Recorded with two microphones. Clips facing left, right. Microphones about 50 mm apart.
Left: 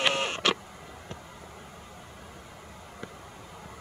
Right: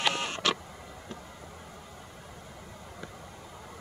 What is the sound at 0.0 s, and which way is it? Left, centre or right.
Radio, left.